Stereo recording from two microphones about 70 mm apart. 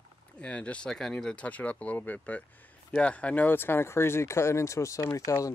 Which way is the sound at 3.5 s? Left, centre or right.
Left.